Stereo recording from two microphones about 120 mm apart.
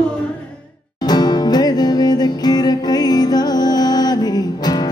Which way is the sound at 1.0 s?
35° left (ahead or behind).